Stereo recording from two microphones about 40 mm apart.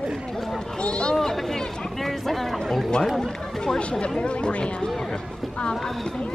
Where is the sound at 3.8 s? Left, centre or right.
Left.